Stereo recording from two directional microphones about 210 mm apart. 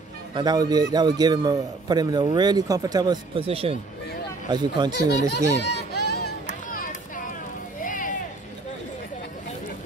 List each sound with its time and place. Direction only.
0.3 s a man's voice: 20° right (ahead or behind)
5.3 s speech: 55° left (ahead or behind)
6.0 s music: 45° left (ahead or behind)
7.8 s a sound: 40° left (ahead or behind)